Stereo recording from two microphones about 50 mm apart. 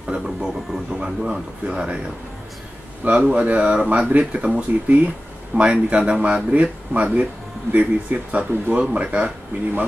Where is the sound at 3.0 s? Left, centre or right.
Right.